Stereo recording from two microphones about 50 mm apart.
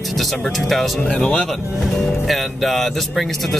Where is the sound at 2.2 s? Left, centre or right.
Centre.